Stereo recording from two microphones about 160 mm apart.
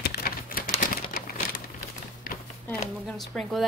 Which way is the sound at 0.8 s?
60° left (ahead or behind).